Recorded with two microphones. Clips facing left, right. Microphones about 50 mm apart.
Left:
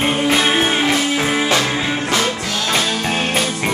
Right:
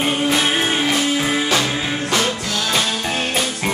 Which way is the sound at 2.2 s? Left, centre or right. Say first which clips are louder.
Left 1 dB; centre.